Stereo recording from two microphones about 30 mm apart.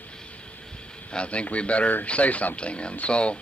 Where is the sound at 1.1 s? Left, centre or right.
Left.